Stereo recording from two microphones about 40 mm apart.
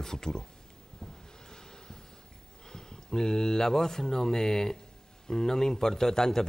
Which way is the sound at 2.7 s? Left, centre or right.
Centre.